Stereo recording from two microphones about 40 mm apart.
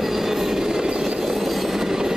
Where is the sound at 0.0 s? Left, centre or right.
Centre.